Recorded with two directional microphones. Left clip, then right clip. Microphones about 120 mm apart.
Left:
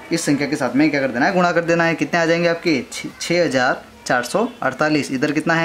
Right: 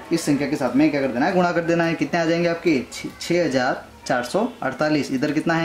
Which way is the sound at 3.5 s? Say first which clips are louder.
Left 4 dB; 25° left (ahead or behind).